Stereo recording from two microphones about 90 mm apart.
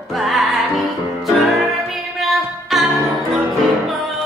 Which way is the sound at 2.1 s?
Centre (ahead or behind).